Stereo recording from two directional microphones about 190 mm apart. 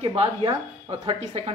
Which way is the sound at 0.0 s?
30° right (ahead or behind).